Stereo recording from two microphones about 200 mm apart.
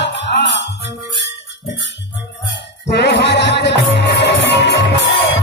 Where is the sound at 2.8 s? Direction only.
60° left (ahead or behind).